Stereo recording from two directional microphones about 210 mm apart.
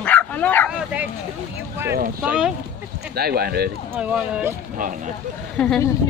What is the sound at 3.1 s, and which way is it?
Speech, 50° right (ahead or behind).